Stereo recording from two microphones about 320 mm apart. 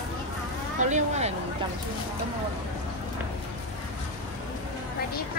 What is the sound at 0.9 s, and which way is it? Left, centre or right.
Speech, right.